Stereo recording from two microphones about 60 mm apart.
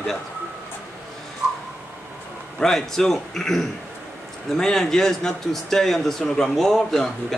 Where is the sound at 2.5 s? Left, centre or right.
Centre.